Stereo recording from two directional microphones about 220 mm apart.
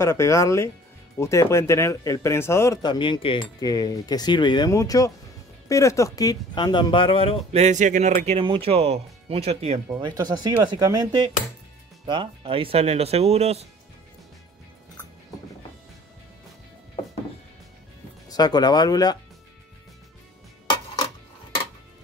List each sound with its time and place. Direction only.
0.0 s speech: 15° left (ahead or behind)
7.5 s speech: 30° right (ahead or behind)
18.3 s speech: 20° left (ahead or behind)
20.6 s a sound: 20° left (ahead or behind)